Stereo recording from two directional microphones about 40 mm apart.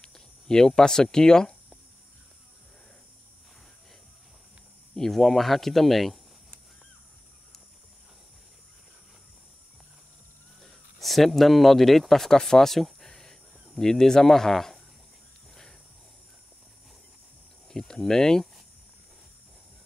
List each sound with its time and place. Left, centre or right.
0.0 s speech: centre
4.9 s speech: centre
10.6 s speech: centre
17.6 s speech: centre